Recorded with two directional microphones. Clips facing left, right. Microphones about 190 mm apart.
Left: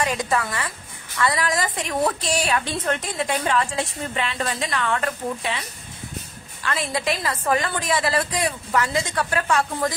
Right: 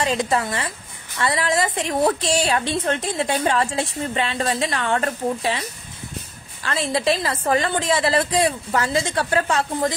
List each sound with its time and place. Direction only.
0.0 s a woman's voice: 25° right (ahead or behind)